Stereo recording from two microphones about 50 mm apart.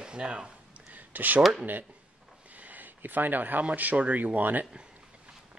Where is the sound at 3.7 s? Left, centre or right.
Right.